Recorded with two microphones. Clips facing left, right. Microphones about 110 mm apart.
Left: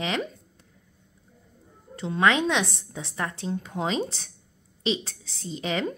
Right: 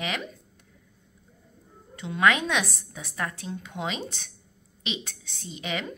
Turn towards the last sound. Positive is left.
turn(degrees=30)  # may be behind; listen again after turning